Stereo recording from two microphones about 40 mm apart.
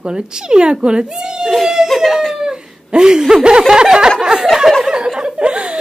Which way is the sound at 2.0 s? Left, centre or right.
Centre.